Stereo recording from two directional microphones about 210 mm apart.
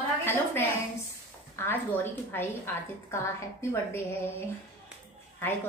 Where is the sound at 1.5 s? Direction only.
10° left (ahead or behind).